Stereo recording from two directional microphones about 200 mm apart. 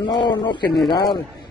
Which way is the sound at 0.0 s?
20° left (ahead or behind).